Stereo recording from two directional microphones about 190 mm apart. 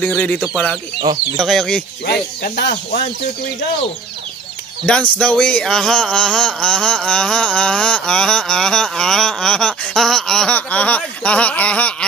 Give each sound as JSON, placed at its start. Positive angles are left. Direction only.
{"t": 0.0, "sound": "speech", "side_deg": 10}
{"t": 2.0, "sound": "speech", "side_deg": 55}
{"t": 4.8, "sound": "speech", "side_deg": 5}